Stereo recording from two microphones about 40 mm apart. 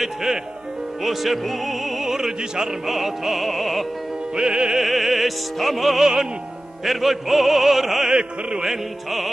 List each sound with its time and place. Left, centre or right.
0.0 s speech: centre
1.0 s music: centre
4.4 s music: right
4.7 s music: centre
8.1 s music: right
8.6 s music: centre